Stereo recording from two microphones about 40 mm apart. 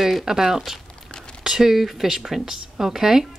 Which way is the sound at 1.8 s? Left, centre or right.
Centre.